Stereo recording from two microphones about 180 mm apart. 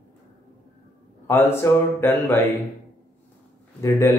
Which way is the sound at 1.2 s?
15° left (ahead or behind).